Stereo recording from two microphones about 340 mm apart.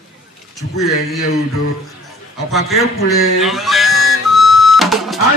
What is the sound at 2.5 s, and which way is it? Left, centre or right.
Whistle, centre.